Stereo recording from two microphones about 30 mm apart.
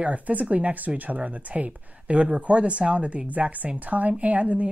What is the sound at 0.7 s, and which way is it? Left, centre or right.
A woman's voice, right.